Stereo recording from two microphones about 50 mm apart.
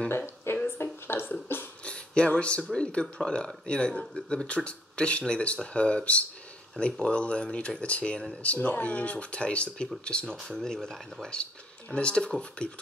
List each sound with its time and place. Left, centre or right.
0.5 s a sound: left
1.0 s beatboxing: left
1.9 s speech: centre
10.2 s speech: centre
10.5 s speech: centre